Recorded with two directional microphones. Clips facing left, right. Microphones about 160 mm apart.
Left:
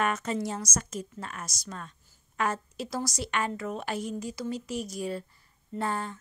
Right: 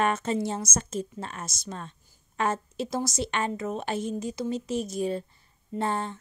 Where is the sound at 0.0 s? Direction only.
30° right (ahead or behind).